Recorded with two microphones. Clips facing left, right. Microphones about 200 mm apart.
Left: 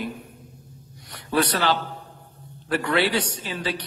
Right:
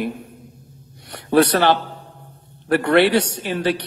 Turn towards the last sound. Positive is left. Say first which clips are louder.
# right 8 dB
turn(degrees=-60)  # may be behind; listen again after turning